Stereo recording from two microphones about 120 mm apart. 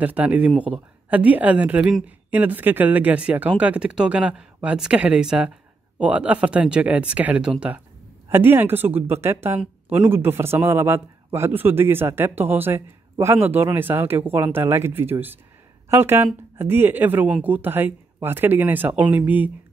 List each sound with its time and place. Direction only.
0.0 s a woman's voice: 10° right (ahead or behind)